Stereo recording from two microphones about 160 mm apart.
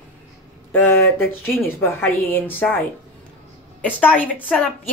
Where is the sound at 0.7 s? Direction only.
15° left (ahead or behind).